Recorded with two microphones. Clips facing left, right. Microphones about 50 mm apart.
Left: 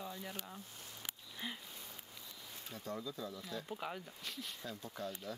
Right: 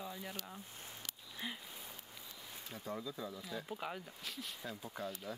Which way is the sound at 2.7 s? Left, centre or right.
Centre.